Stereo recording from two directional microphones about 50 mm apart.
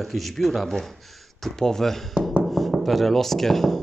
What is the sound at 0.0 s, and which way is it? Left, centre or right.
Speech, centre.